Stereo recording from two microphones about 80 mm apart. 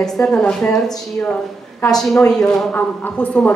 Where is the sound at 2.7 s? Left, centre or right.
Centre.